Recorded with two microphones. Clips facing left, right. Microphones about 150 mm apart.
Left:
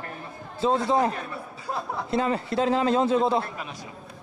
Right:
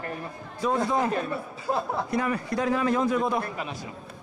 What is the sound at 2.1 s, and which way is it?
Speech, 25° left (ahead or behind).